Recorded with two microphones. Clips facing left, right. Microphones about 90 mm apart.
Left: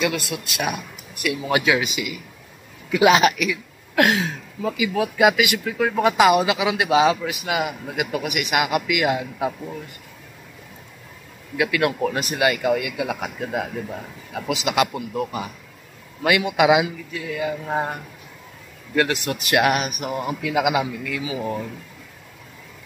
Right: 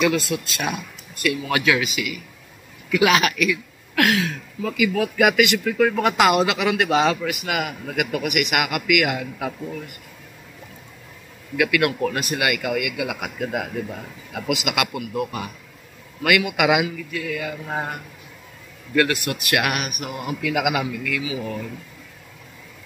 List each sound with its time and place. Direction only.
0.0 s a man's voice: 10° left (ahead or behind)
11.5 s a man's voice: 20° left (ahead or behind)
13.4 s a man's voice: 5° right (ahead or behind)
14.5 s a man's voice: 20° left (ahead or behind)
18.9 s a man's voice: 20° left (ahead or behind)
21.2 s speech: 35° left (ahead or behind)